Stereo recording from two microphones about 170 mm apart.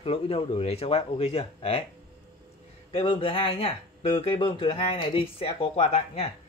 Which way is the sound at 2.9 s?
35° left (ahead or behind).